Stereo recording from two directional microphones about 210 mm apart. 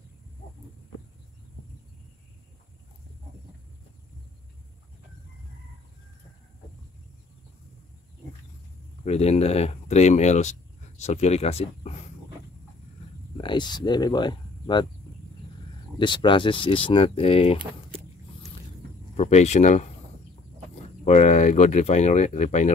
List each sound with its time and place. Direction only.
9.0 s speech: 30° left (ahead or behind)
13.4 s speech: 20° left (ahead or behind)
16.0 s speech: 20° left (ahead or behind)
19.1 s speech: 30° left (ahead or behind)
21.0 s speech: 35° left (ahead or behind)